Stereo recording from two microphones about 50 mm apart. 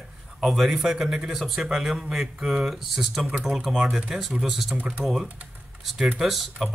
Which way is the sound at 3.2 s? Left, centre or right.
Right.